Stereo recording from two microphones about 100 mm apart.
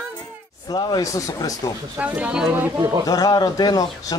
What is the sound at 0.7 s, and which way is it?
Speech, 40° left (ahead or behind).